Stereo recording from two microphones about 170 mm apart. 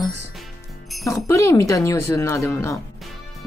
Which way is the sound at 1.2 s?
20° left (ahead or behind).